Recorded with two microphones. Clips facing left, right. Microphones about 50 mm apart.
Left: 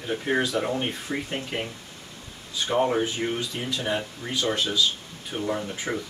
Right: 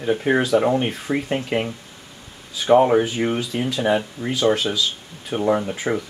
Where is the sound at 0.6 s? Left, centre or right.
Right.